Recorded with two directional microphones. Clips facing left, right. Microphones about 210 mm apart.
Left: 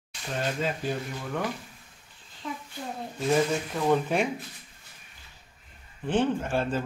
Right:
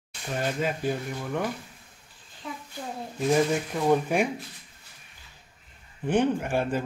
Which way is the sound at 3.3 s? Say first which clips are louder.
Right 1 dB; 10° right (ahead or behind).